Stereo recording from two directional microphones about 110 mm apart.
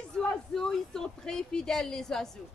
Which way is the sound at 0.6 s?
5° left (ahead or behind).